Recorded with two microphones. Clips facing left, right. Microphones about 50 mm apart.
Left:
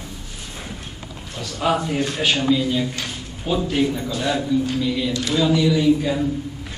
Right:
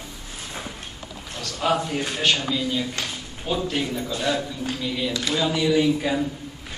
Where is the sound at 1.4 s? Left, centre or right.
Centre.